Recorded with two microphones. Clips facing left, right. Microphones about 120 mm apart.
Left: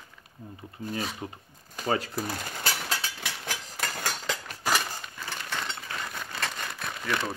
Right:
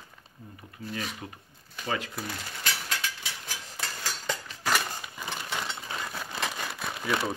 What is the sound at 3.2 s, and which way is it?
Hammer, 60° left (ahead or behind).